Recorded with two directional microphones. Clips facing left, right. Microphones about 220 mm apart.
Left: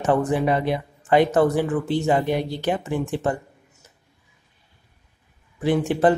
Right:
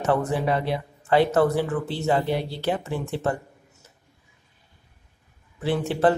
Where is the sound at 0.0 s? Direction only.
15° left (ahead or behind).